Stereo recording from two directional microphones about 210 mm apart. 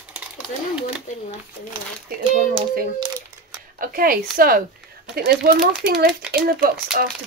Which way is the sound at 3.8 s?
45° right (ahead or behind).